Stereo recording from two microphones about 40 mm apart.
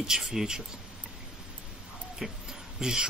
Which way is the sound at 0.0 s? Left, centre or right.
Centre.